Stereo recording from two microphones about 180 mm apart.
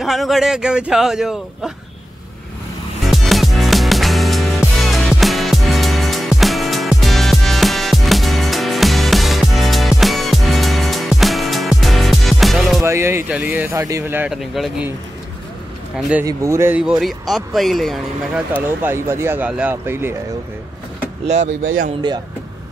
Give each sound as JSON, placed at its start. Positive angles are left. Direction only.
{"t": 0.0, "sound": "a man's voice", "side_deg": 0}
{"t": 3.1, "sound": "music", "side_deg": 0}
{"t": 12.8, "sound": "speech", "side_deg": -15}
{"t": 16.3, "sound": "speech", "side_deg": -15}